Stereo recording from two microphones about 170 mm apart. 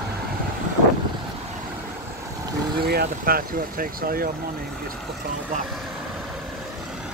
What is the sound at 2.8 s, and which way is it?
Vehicle, 65° right (ahead or behind).